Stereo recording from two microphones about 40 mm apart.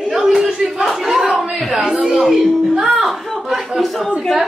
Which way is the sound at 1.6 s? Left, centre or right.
Centre.